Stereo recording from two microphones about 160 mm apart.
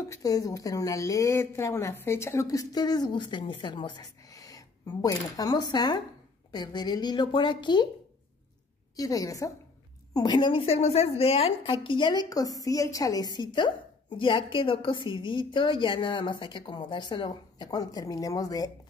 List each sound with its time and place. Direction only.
0.1 s a woman's voice: 20° left (ahead or behind)
8.9 s a woman's voice: 20° left (ahead or behind)